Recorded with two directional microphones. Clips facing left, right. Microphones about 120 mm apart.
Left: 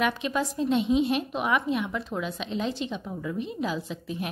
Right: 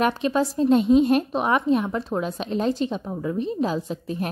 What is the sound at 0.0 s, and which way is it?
A woman's voice, 35° right (ahead or behind).